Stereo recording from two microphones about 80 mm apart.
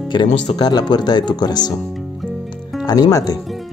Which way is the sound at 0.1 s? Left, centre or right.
Left.